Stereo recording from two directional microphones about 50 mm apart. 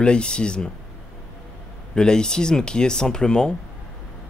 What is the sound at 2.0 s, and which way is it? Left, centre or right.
Speech, centre.